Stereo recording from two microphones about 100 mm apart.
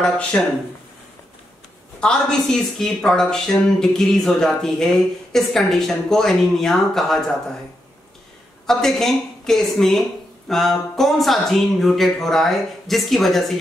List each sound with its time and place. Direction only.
0.3 s speech: 20° left (ahead or behind)
2.0 s a woman's voice: 10° left (ahead or behind)
8.6 s a woman's voice: 5° left (ahead or behind)